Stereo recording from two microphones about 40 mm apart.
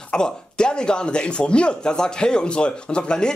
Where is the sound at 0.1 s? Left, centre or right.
Left.